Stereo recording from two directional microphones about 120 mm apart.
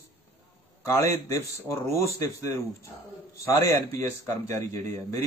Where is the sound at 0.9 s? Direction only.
25° left (ahead or behind).